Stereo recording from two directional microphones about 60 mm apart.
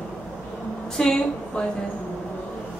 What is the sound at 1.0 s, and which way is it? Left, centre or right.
Speech, centre.